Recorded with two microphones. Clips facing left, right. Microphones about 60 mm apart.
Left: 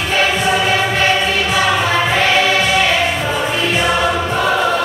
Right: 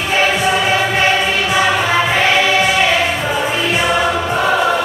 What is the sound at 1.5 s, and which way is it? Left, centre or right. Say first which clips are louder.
Music: right 1 dB; centre.